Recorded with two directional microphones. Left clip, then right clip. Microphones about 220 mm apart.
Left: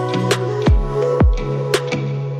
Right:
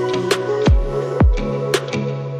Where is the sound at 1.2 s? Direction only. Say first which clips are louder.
Even; 5° right (ahead or behind).